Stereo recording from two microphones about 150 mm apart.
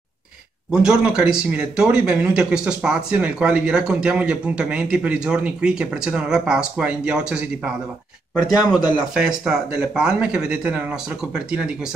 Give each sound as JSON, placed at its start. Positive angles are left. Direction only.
{"t": 0.7, "sound": "speech", "side_deg": -5}
{"t": 8.4, "sound": "speech", "side_deg": 25}
{"t": 9.1, "sound": "speech", "side_deg": -5}